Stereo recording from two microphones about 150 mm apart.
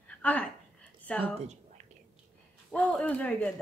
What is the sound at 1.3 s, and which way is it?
Whispering, 50° right (ahead or behind).